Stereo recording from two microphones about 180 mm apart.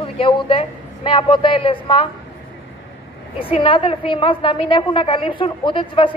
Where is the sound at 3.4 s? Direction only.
30° left (ahead or behind).